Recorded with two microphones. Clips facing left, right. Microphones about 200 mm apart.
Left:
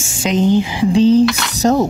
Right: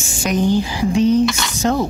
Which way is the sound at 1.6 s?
40° left (ahead or behind).